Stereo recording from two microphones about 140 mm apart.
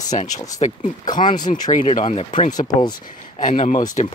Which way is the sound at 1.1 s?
70° left (ahead or behind).